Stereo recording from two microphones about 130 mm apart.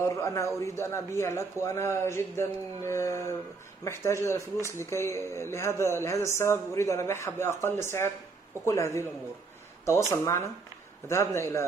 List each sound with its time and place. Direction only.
0.0 s speech: 20° left (ahead or behind)